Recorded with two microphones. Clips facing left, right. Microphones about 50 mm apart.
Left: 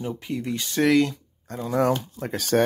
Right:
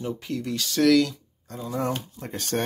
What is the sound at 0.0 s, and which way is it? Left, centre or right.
Speech, centre.